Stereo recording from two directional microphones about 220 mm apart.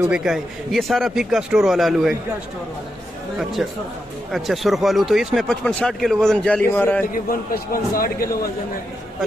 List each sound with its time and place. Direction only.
0.0 s speech: 5° right (ahead or behind)
3.6 s speech: centre (ahead or behind)
7.2 s a man's voice: 40° left (ahead or behind)